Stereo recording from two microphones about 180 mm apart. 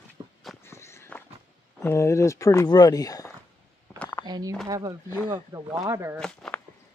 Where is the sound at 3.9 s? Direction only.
15° left (ahead or behind).